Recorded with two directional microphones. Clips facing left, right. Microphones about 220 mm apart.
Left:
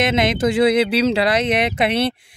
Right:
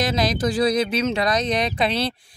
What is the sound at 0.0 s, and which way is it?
A woman's voice, 25° left (ahead or behind).